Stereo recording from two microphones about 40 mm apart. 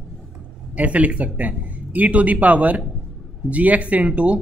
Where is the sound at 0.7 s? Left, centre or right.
Right.